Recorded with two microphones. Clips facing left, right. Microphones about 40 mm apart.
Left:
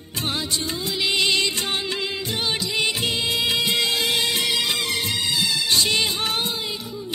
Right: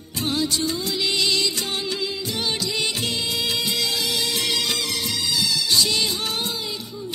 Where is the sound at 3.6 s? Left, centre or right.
Left.